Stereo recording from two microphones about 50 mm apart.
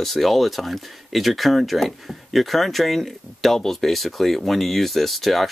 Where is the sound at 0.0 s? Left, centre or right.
Centre.